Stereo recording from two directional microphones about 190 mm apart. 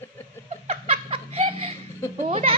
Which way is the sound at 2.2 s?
35° right (ahead or behind).